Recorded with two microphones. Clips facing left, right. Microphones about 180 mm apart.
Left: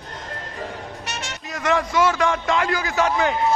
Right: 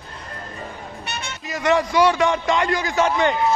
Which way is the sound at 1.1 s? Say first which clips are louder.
Right 2 dB; 75° left (ahead or behind).